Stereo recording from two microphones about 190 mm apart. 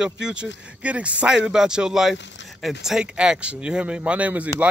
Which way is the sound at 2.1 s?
70° left (ahead or behind).